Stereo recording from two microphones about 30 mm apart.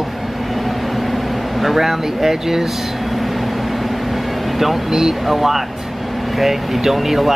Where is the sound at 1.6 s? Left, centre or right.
Centre.